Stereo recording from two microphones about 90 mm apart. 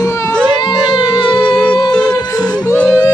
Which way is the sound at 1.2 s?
10° left (ahead or behind).